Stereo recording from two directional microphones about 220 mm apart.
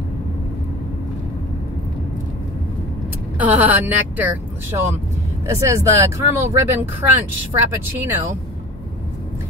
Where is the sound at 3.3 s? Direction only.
10° right (ahead or behind).